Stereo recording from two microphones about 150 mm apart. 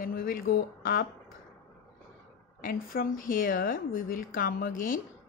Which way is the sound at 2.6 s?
70° left (ahead or behind).